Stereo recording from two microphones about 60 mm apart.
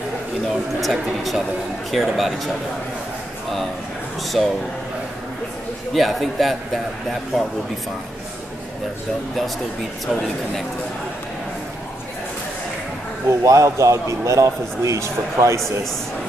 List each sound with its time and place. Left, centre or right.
0.5 s a man's voice: centre
4.4 s a man's voice: centre
5.9 s a man's voice: centre
13.3 s a man's voice: right